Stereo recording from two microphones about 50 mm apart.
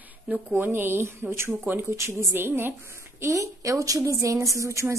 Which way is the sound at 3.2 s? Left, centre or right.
Right.